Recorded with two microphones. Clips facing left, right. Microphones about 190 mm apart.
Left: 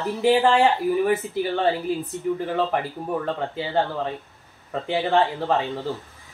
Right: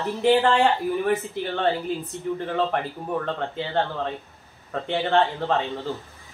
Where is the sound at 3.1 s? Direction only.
5° left (ahead or behind).